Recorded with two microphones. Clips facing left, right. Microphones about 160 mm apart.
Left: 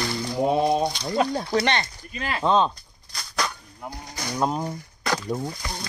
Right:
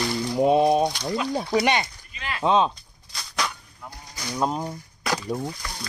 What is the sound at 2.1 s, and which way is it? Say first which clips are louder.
Speech: left 4 dB; 40° left (ahead or behind).